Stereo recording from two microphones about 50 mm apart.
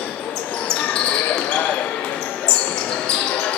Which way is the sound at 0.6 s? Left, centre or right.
Left.